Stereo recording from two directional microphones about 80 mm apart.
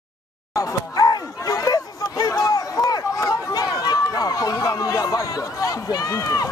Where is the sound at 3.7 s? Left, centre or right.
Left.